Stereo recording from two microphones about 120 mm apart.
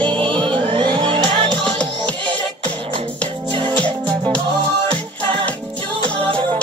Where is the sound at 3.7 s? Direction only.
10° left (ahead or behind).